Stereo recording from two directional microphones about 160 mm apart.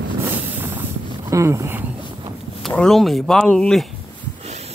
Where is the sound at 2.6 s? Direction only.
5° left (ahead or behind).